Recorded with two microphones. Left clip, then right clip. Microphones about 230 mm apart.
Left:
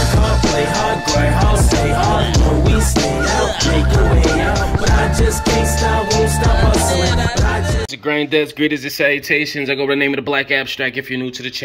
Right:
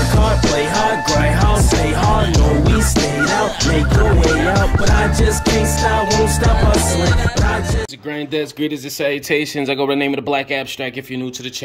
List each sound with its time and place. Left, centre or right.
0.0 s music: centre
8.1 s speech: centre